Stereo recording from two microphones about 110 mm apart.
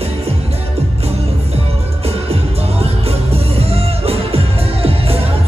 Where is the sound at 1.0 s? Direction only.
70° right (ahead or behind).